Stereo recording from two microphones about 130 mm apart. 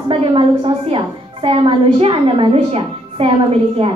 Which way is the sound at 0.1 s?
45° right (ahead or behind).